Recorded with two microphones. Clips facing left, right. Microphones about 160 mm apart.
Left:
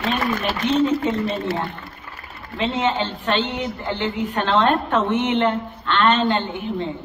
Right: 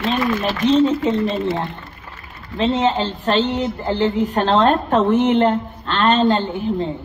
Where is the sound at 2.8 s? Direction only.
35° right (ahead or behind).